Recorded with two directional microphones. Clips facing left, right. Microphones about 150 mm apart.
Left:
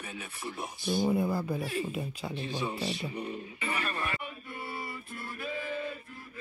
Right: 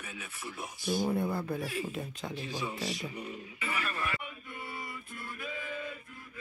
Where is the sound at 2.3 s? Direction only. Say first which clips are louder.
Left 3 dB; 30° left (ahead or behind).